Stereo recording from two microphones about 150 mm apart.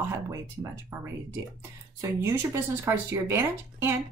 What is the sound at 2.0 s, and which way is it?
Speech, 20° right (ahead or behind).